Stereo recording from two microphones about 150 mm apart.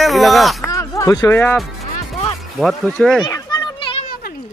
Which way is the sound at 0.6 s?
20° left (ahead or behind).